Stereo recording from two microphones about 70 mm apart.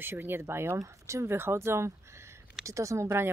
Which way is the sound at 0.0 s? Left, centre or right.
Right.